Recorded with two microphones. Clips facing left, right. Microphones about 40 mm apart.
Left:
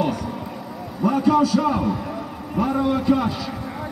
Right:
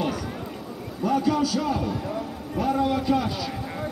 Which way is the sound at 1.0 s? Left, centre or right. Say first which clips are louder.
Left 5 dB; left.